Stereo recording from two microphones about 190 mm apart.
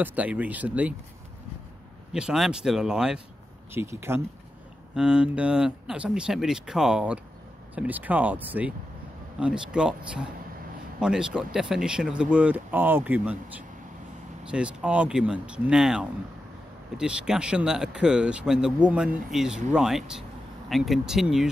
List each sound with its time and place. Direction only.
0.0 s speech: 10° right (ahead or behind)
2.1 s speech: 5° right (ahead or behind)